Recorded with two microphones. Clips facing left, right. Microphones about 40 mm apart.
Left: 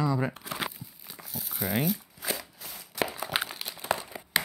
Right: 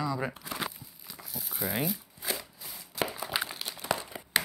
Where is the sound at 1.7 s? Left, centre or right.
Centre.